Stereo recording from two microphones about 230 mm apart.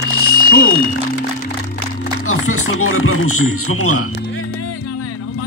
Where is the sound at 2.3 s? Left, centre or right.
Left.